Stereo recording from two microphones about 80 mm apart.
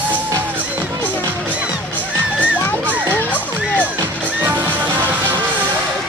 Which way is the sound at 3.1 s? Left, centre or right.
Centre.